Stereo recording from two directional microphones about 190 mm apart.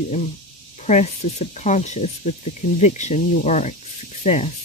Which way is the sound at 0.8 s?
40° left (ahead or behind).